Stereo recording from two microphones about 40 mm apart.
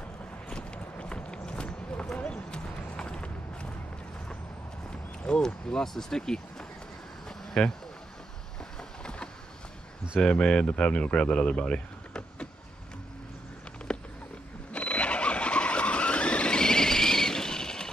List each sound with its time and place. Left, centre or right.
0.5 s run: left
5.4 s speech: centre
7.2 s a sound: centre
8.7 s vehicle: left
10.4 s speech: left
13.9 s a sound: left
14.7 s vehicle: left; by 17.8 s centre